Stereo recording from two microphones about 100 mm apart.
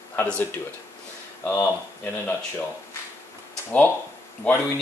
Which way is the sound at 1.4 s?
20° left (ahead or behind).